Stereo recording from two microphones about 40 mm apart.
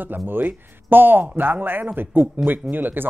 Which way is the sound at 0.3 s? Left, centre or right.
Right.